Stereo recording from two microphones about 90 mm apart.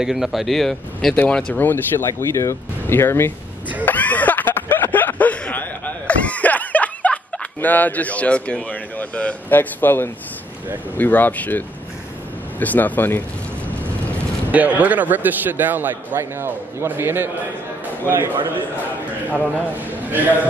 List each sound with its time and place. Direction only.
0.0 s speech: 5° right (ahead or behind)
1.1 s speech: 15° left (ahead or behind)
3.8 s a sound: 15° left (ahead or behind)
7.6 s speech: 20° left (ahead or behind)
14.5 s a man's voice: 15° right (ahead or behind)